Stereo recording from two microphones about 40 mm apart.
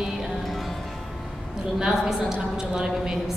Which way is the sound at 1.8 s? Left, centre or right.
Centre.